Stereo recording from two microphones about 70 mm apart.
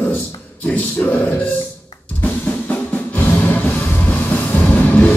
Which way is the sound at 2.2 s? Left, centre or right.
Left.